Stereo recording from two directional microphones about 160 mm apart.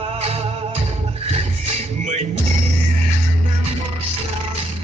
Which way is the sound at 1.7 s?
40° right (ahead or behind).